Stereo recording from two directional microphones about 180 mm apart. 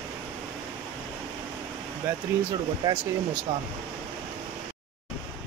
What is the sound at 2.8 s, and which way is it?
Speech, 25° right (ahead or behind).